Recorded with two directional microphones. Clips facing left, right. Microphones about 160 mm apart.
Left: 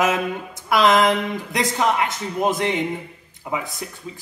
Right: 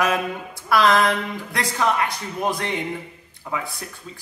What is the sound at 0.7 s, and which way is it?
Speech, 20° left (ahead or behind).